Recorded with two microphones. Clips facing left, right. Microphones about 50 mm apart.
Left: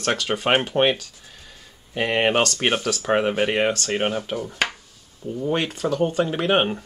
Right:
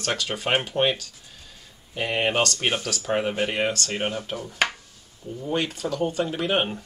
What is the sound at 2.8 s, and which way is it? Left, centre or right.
Speech, centre.